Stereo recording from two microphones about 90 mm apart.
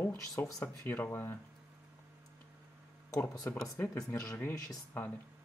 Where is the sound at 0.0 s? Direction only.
25° left (ahead or behind).